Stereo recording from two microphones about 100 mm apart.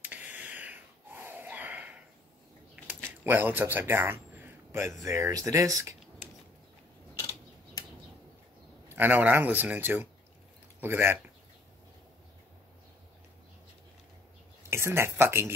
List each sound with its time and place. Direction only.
0.0 s gasp: 15° right (ahead or behind)
3.3 s a man's voice: 20° right (ahead or behind)
7.2 s a sound: 35° left (ahead or behind)
8.9 s speech: 15° right (ahead or behind)
14.7 s speech: 25° right (ahead or behind)